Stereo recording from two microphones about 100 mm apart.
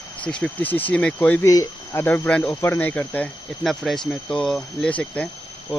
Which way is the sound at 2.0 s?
20° left (ahead or behind).